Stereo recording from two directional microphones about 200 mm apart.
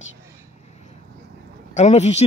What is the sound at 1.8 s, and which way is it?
Speech, 35° left (ahead or behind).